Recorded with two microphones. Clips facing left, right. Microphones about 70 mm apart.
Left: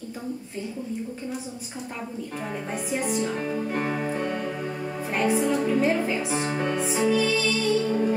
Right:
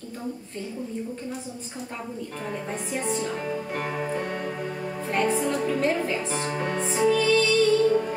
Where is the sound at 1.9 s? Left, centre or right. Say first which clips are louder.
Left 2 dB; centre.